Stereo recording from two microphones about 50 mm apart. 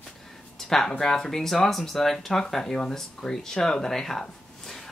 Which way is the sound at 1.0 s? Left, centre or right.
Centre.